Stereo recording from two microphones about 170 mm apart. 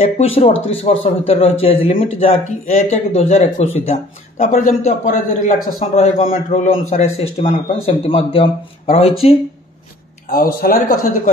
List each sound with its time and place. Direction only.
0.0 s a man's voice: 40° left (ahead or behind)
10.3 s a man's voice: 60° left (ahead or behind)